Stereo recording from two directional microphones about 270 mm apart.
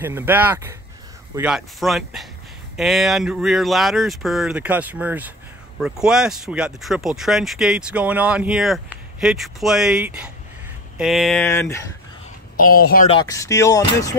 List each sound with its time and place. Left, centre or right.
0.0 s speech: centre
11.4 s speech: centre
12.5 s speech: left
13.1 s speech: centre